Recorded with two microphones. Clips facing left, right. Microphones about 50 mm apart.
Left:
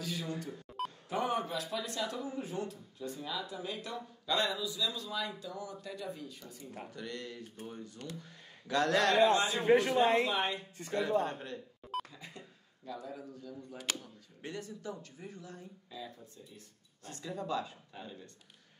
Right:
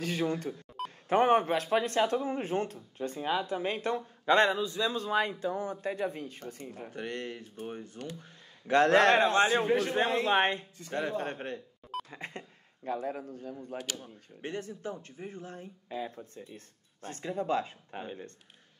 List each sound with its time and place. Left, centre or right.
0.0 s a man's voice: right
0.7 s a sound: centre
1.0 s a man's voice: right
9.7 s a man's voice: left
10.2 s a man's voice: right